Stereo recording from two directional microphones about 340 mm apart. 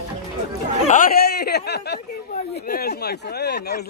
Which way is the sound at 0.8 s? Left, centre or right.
Left.